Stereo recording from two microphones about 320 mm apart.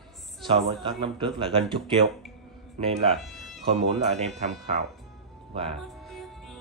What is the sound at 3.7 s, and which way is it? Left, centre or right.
Speech, centre.